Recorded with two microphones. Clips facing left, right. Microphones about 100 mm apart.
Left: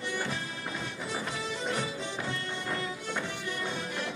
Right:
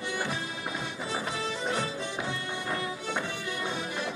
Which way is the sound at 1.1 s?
20° right (ahead or behind).